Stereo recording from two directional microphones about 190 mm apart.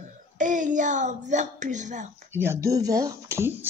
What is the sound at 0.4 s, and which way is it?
A child's voice, 40° right (ahead or behind).